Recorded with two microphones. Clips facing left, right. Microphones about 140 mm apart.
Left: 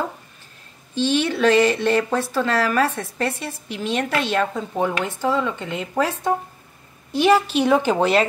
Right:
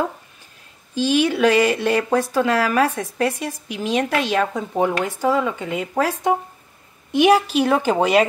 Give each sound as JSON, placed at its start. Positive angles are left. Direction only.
{"t": 0.9, "sound": "speech", "side_deg": -10}